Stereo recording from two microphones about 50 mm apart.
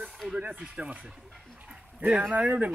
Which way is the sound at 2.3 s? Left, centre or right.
Right.